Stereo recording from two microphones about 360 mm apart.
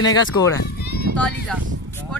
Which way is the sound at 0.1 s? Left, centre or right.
Centre.